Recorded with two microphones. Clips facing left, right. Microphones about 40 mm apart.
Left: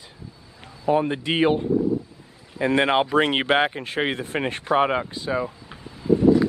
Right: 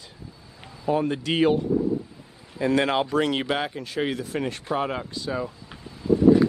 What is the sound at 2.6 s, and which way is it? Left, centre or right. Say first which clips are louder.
Speech: left 2 dB; left.